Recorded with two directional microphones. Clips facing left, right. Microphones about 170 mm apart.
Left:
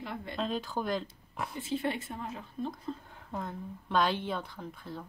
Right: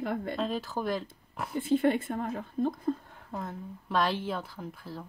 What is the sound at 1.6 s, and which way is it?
A woman's voice, 55° right (ahead or behind).